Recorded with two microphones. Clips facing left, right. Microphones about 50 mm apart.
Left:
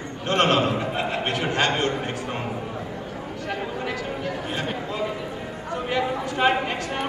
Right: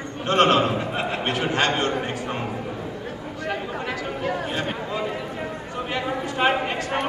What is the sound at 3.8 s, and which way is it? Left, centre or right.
Speech, right.